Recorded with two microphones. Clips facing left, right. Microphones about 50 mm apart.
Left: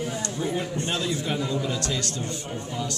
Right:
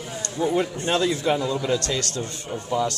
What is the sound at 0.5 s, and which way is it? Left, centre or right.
Speech, right.